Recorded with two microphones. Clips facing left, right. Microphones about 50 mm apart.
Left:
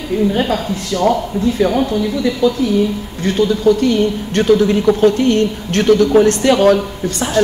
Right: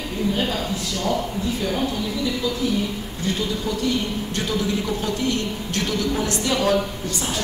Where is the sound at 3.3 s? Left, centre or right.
Left.